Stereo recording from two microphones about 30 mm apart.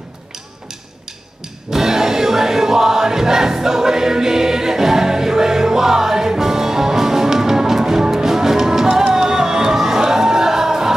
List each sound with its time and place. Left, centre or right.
1.7 s music: centre